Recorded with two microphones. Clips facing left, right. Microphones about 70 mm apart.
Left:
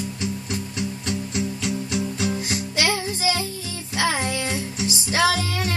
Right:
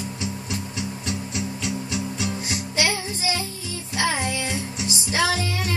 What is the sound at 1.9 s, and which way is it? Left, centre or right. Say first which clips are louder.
Music: left 3 dB; left.